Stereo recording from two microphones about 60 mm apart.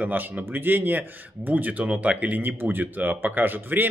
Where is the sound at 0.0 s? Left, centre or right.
Right.